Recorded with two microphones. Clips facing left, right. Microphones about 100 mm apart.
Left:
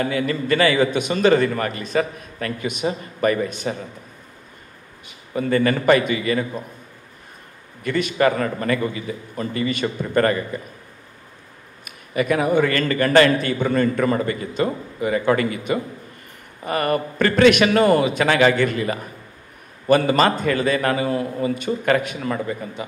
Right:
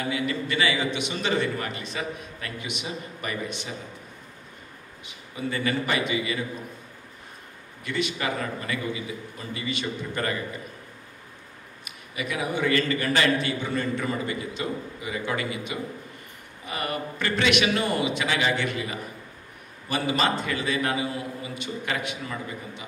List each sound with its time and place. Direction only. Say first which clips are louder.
0.0 s a man's voice: left 6 dB; 50° left (ahead or behind)
5.0 s a man's voice: left 8 dB; 50° left (ahead or behind)
7.8 s a man's voice: left 10 dB; 50° left (ahead or behind)
11.8 s a man's voice: left 11 dB; 50° left (ahead or behind)